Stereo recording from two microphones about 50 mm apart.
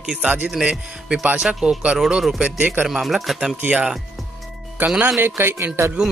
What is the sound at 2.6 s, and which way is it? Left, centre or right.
Speech, right.